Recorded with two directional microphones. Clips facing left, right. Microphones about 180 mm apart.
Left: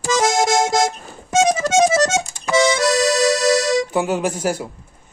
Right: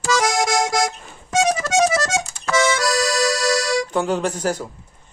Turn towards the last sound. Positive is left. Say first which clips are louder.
# left 1 dB
turn(degrees=10)  # may be behind; listen again after turning